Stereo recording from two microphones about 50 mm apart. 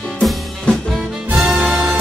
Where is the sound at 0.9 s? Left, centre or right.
Centre.